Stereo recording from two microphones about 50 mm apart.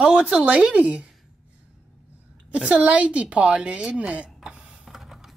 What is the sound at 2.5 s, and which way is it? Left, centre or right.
A woman's voice, right.